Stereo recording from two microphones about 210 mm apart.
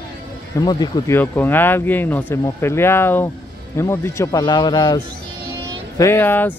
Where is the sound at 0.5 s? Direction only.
20° left (ahead or behind).